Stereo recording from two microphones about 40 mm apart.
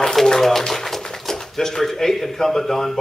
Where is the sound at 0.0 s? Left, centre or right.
Centre.